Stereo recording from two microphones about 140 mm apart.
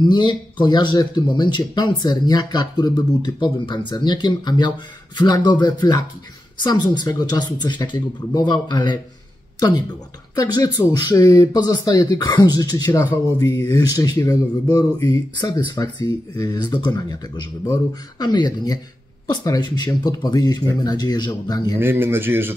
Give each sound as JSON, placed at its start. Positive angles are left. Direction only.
{"t": 0.0, "sound": "speech", "side_deg": 30}
{"t": 10.3, "sound": "speech", "side_deg": 25}
{"t": 21.7, "sound": "speech", "side_deg": -15}